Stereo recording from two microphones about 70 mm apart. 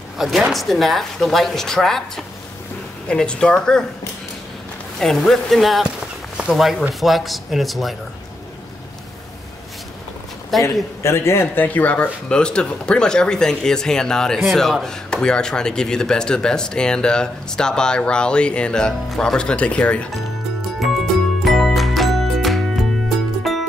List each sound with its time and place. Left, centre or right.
0.2 s speech: centre
5.0 s speech: centre
5.9 s a sound: centre
6.5 s speech: centre
10.6 s a man's voice: left
11.6 s speech: left
21.5 s music: centre